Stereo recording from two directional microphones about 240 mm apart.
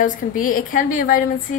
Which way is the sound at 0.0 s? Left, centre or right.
Left.